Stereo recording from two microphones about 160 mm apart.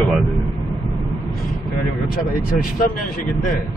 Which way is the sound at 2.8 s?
60° left (ahead or behind).